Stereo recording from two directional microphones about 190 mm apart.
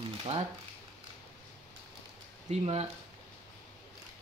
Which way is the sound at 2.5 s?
35° right (ahead or behind).